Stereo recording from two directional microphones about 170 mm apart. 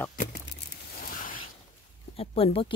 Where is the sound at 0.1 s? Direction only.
55° left (ahead or behind).